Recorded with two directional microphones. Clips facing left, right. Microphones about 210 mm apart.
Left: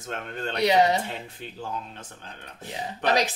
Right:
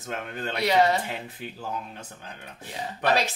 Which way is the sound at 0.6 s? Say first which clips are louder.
Left 1 dB; 20° left (ahead or behind).